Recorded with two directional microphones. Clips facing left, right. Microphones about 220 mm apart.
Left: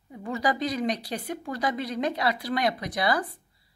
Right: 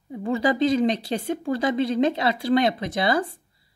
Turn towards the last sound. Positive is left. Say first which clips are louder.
# right 4 dB
turn(degrees=-25)  # may be behind; listen again after turning